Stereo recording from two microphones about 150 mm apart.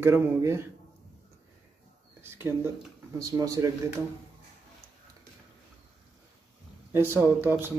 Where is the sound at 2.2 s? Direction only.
15° right (ahead or behind).